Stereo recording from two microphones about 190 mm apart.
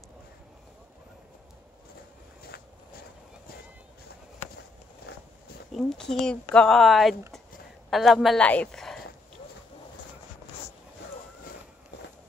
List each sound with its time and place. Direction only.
2.4 s walk: 55° left (ahead or behind)
5.7 s a woman's voice: centre (ahead or behind)